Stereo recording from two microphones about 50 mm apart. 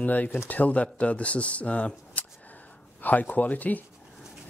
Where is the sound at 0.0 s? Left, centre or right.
Left.